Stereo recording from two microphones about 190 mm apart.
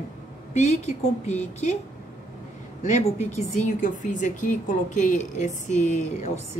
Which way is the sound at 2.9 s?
35° left (ahead or behind).